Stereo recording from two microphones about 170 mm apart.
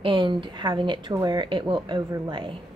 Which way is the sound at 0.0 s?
30° right (ahead or behind).